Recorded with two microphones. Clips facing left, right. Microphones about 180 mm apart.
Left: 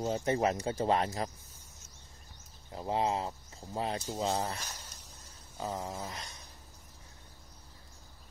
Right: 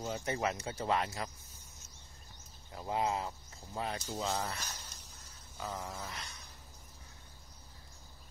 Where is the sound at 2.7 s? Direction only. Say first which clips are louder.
Left 3 dB; 30° left (ahead or behind).